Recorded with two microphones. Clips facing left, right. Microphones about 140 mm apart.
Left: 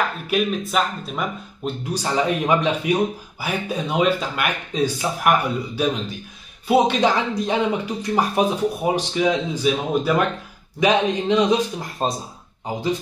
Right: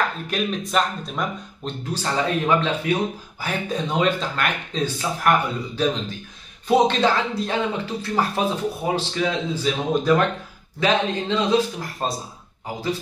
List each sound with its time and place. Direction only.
0.3 s speech: 5° left (ahead or behind)